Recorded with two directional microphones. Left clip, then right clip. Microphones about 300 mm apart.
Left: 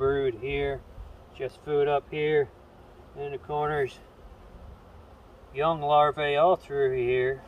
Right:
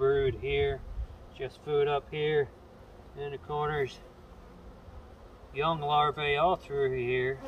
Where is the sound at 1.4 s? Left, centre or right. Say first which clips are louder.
Left 3 dB; centre.